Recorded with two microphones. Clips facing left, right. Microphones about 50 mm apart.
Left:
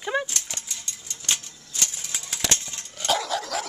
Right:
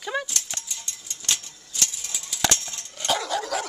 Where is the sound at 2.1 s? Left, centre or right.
Left.